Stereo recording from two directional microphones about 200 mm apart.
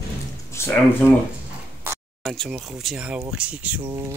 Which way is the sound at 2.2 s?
Centre (ahead or behind).